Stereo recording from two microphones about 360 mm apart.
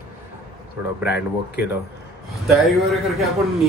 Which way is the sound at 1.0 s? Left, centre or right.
Left.